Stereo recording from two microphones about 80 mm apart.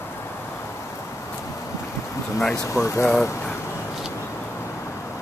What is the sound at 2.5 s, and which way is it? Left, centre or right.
Speech, left.